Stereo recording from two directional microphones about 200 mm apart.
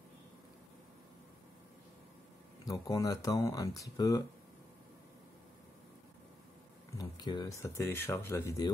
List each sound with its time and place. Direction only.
2.6 s speech: 15° left (ahead or behind)
7.0 s speech: 20° left (ahead or behind)